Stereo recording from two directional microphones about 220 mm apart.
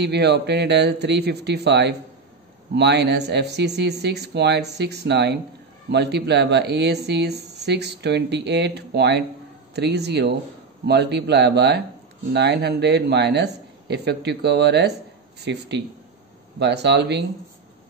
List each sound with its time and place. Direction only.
0.0 s speech: 50° right (ahead or behind)